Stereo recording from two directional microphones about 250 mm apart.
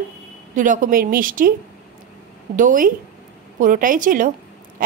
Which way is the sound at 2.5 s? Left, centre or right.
Right.